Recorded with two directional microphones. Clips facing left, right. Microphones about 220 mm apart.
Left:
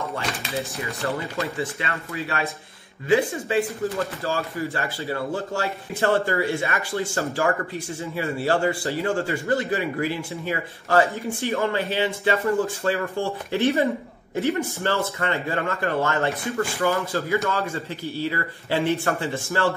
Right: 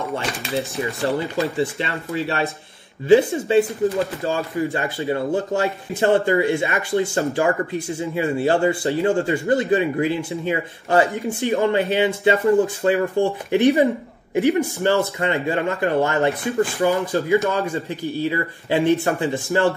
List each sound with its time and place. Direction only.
1.8 s speech: 30° right (ahead or behind)